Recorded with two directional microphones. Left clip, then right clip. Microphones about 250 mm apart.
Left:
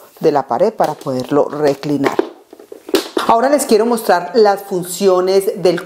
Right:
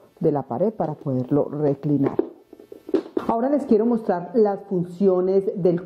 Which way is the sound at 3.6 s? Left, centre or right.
Centre.